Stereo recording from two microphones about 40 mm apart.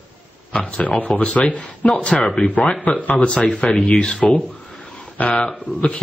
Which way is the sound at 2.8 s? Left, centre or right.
Left.